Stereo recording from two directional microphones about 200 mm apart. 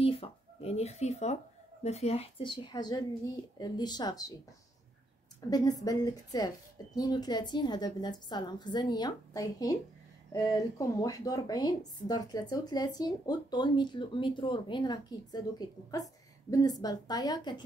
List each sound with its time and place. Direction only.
0.0 s a sound: 30° left (ahead or behind)
3.5 s speech: 20° left (ahead or behind)
5.5 s speech: 20° left (ahead or behind)